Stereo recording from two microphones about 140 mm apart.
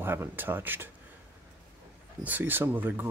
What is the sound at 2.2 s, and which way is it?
Speech, 15° right (ahead or behind).